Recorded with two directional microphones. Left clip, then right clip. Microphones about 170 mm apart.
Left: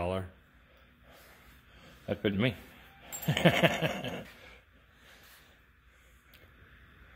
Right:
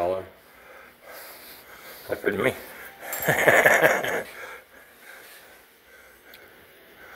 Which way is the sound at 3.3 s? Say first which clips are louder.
Right 10 dB; 10° right (ahead or behind).